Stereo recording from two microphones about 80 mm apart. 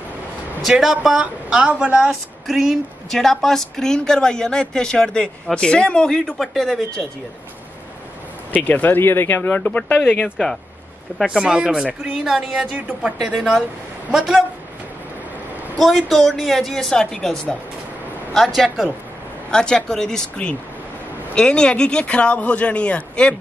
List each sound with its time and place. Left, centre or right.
0.6 s speech: centre
1.2 s speech: centre
2.4 s a woman's voice: centre
8.5 s speech: left
11.1 s speech: centre
13.2 s speech: centre
15.8 s a woman's voice: centre